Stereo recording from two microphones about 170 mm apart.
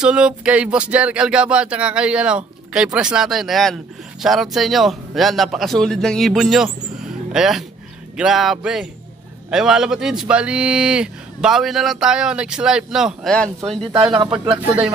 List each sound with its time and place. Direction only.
0.0 s a man's voice: 5° right (ahead or behind)
14.1 s speech: 30° right (ahead or behind)